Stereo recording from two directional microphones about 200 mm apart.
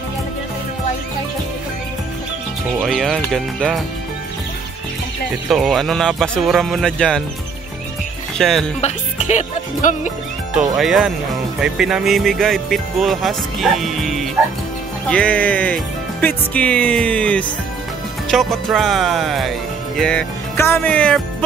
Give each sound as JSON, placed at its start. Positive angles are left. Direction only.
{"t": 2.8, "sound": "speech", "side_deg": 0}
{"t": 5.5, "sound": "speech", "side_deg": 0}
{"t": 8.4, "sound": "speech", "side_deg": 0}
{"t": 8.8, "sound": "music", "side_deg": 35}
{"t": 10.5, "sound": "speech", "side_deg": 0}